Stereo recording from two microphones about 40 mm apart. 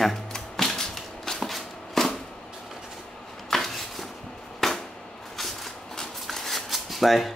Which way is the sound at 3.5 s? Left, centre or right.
Centre.